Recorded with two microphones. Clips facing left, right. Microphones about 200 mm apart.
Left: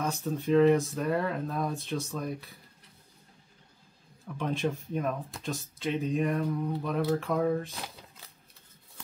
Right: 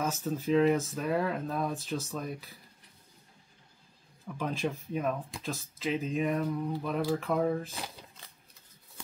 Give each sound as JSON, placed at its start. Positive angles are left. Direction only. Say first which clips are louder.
{"t": 0.0, "sound": "speech", "louder": "even", "side_deg": -5}
{"t": 4.4, "sound": "speech", "louder": "left 2 dB", "side_deg": 0}